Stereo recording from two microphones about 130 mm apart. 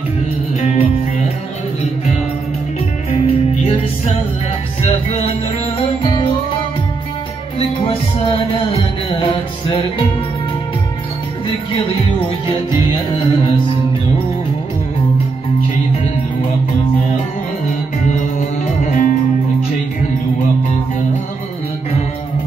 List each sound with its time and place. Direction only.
0.6 s music: 60° left (ahead or behind)
3.2 s music: 50° left (ahead or behind)
5.8 s music: 40° left (ahead or behind)
7.5 s music: 50° left (ahead or behind)
12.9 s music: 40° left (ahead or behind)
18.8 s music: 70° left (ahead or behind)